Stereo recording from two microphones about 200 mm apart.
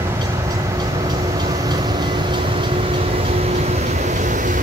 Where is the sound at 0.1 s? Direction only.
15° right (ahead or behind).